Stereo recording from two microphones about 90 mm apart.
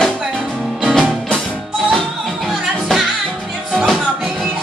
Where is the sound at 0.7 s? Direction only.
Centre (ahead or behind).